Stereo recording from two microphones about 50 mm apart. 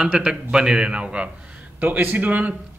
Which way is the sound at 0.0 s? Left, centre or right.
Centre.